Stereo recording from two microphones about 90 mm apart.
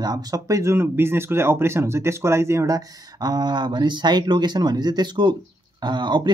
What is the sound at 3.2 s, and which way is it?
Speech, 50° right (ahead or behind).